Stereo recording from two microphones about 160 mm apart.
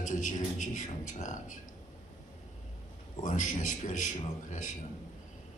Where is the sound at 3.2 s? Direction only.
55° left (ahead or behind).